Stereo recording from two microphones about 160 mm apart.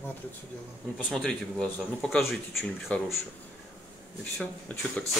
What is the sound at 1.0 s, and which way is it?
Speech, 5° left (ahead or behind).